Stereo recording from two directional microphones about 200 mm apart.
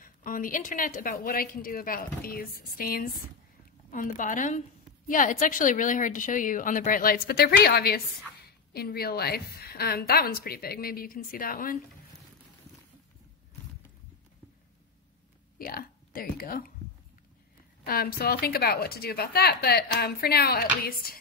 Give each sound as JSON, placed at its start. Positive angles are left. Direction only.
{"t": 0.0, "sound": "a woman's voice", "side_deg": 45}
{"t": 15.6, "sound": "speech", "side_deg": 45}
{"t": 17.8, "sound": "a woman's voice", "side_deg": 50}